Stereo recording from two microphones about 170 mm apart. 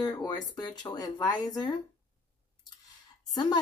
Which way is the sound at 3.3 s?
25° left (ahead or behind).